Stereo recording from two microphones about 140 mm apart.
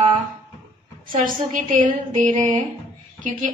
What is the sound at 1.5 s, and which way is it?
A woman's voice, 65° right (ahead or behind).